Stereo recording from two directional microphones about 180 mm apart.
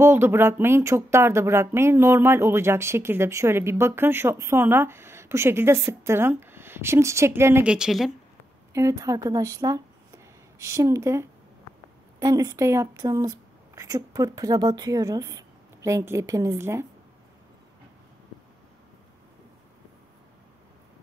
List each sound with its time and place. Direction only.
0.0 s speech: 15° right (ahead or behind)
8.7 s speech: 15° right (ahead or behind)